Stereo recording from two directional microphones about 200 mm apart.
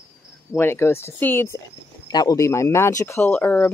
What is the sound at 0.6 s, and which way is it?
Speech, 10° left (ahead or behind).